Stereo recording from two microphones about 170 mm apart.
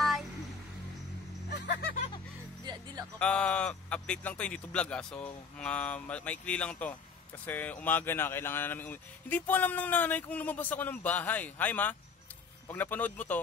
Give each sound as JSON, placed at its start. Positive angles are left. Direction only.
{"t": 0.0, "sound": "a sound", "side_deg": 0}
{"t": 2.6, "sound": "music", "side_deg": -25}
{"t": 3.2, "sound": "speech", "side_deg": 5}